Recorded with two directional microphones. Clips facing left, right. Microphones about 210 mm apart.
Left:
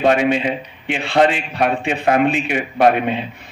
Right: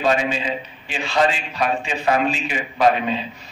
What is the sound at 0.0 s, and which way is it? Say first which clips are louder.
A man's voice: left 5 dB; 60° left (ahead or behind).